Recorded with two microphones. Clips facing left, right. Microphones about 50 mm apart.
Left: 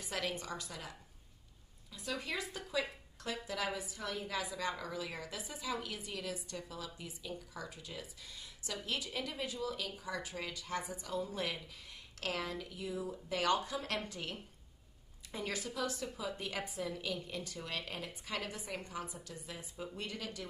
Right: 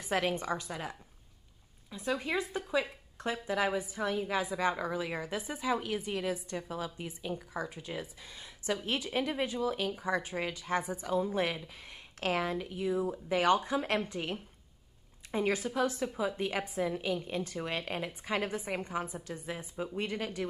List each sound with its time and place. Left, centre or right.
0.0 s a woman's voice: right